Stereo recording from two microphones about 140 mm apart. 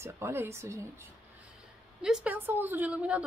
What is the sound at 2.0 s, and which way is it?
Speech, 5° right (ahead or behind).